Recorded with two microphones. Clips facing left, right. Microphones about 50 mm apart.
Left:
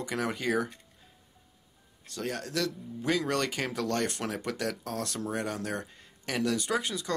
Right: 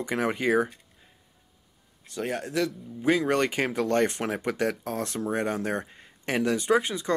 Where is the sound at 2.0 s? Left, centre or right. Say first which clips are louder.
Right 4 dB; right.